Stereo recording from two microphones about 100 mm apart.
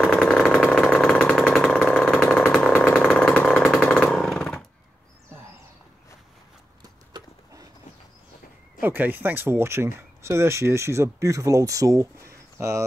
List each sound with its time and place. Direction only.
0.0 s engine: 5° left (ahead or behind)
1.9 s vehicle: 5° left (ahead or behind)
8.8 s speech: 20° right (ahead or behind)